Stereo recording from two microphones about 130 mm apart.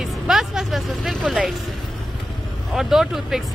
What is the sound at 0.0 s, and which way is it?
Speech, centre (ahead or behind).